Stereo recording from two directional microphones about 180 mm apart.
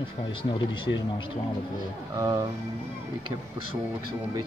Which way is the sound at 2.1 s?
20° right (ahead or behind).